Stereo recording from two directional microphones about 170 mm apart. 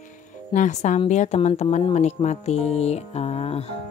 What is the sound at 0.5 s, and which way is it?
Speech, 45° left (ahead or behind).